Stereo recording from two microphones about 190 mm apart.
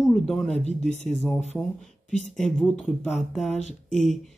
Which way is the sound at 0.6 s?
35° left (ahead or behind).